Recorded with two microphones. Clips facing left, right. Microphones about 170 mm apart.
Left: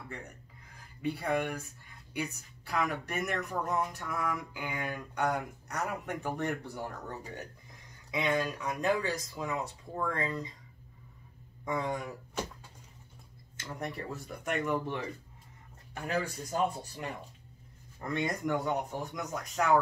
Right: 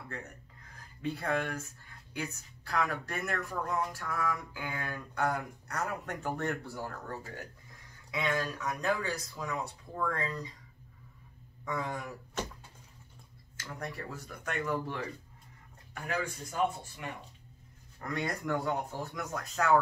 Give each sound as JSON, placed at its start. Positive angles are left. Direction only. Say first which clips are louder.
{"t": 1.0, "sound": "speech", "louder": "left 2 dB", "side_deg": 10}
{"t": 11.6, "sound": "speech", "louder": "left 3 dB", "side_deg": 20}
{"t": 13.6, "sound": "speech", "louder": "left 2 dB", "side_deg": 25}
{"t": 16.1, "sound": "speech", "louder": "left 3 dB", "side_deg": 35}
{"t": 18.0, "sound": "speech", "louder": "left 2 dB", "side_deg": 20}